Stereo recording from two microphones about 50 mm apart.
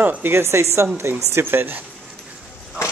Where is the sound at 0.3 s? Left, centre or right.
Right.